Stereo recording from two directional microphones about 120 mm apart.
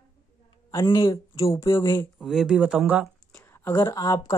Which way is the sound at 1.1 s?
25° left (ahead or behind).